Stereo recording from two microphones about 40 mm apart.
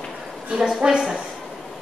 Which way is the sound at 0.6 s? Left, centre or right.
Centre.